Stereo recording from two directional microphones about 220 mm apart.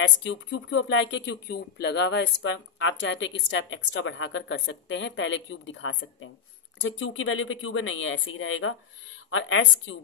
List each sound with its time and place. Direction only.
0.0 s a woman's voice: 60° left (ahead or behind)